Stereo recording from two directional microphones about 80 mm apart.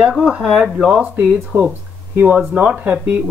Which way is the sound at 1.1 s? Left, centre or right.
Right.